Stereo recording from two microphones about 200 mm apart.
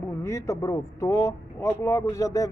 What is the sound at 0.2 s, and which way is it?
Speech, 15° left (ahead or behind).